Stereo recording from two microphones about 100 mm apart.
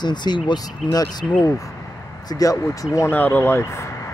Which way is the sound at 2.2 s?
40° left (ahead or behind).